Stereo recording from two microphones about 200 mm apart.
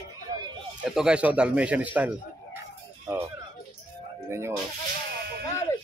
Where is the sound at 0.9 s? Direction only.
5° right (ahead or behind).